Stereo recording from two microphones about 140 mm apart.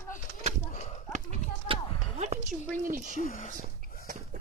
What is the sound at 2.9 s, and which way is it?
Speech, 65° right (ahead or behind).